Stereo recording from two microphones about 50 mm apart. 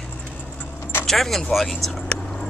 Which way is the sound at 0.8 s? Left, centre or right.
Left.